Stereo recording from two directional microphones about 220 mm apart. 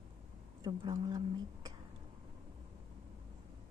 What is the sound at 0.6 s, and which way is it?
A woman's voice, 20° right (ahead or behind).